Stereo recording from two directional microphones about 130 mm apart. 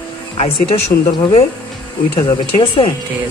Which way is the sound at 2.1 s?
40° left (ahead or behind).